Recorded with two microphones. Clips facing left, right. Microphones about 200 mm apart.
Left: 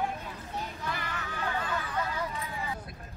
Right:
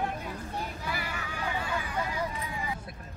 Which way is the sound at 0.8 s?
10° right (ahead or behind).